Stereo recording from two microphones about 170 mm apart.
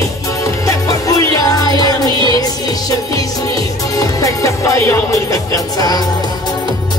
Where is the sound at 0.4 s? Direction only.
20° left (ahead or behind).